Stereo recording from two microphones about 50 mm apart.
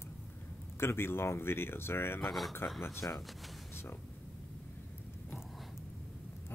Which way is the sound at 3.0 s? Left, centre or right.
Left.